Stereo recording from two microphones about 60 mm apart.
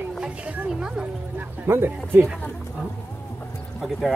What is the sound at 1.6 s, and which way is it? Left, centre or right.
Speech, right.